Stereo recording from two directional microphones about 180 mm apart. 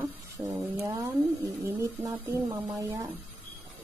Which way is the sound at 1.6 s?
15° right (ahead or behind).